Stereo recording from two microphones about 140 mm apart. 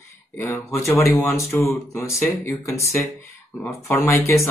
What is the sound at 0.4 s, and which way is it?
Speech, 20° left (ahead or behind).